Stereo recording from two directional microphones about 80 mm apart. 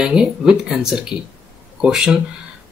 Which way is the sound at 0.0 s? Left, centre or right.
Centre.